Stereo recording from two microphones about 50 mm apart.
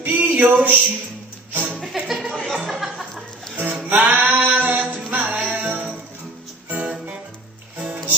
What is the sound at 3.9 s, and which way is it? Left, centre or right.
Music, right.